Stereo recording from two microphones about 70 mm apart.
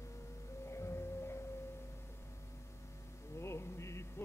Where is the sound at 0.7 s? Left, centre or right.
Left.